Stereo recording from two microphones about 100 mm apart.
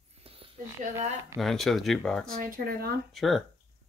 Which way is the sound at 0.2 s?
70° right (ahead or behind).